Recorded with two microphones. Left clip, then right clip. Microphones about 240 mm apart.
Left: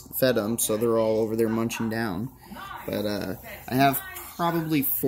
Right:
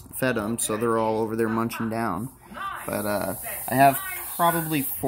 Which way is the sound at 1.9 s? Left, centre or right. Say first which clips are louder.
Right 2 dB; left.